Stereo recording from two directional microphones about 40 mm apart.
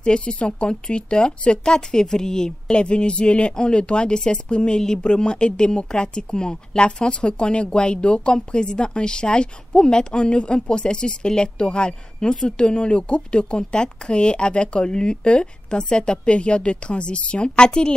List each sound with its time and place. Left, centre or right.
0.0 s speech: left